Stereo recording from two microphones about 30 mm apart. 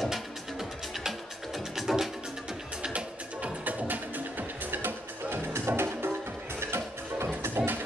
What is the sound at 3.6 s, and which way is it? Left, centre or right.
Music, right.